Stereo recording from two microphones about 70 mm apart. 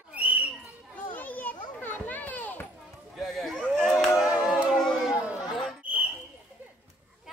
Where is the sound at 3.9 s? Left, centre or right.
Centre.